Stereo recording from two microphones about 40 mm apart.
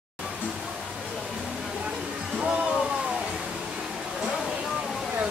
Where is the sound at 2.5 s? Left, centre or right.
Right.